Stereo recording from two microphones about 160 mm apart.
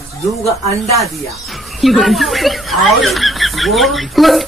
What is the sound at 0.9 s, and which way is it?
Speech, centre (ahead or behind).